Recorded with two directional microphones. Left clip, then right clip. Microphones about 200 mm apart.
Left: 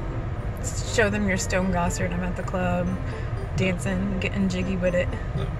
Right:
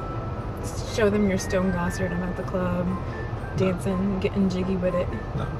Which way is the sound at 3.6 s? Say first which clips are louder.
Right 1 dB; 40° left (ahead or behind).